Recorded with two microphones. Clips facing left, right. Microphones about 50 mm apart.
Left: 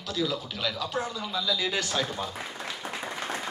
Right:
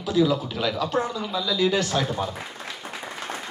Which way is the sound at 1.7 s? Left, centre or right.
Right.